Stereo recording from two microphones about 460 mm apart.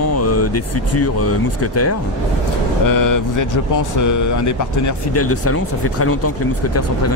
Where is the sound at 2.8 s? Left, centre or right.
Left.